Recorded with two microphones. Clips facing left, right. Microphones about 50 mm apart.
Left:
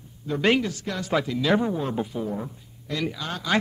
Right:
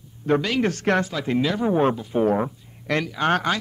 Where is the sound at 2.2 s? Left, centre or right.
Right.